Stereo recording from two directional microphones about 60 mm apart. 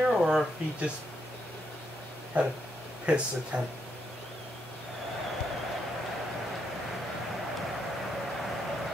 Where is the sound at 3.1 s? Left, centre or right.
Centre.